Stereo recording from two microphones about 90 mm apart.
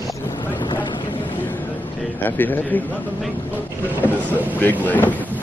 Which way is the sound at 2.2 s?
20° left (ahead or behind).